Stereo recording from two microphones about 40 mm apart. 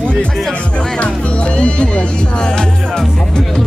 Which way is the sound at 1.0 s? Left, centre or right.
Left.